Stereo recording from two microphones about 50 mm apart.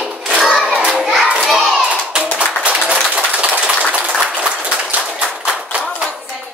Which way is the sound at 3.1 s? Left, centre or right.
Right.